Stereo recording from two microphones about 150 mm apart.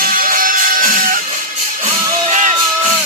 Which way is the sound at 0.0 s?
70° right (ahead or behind).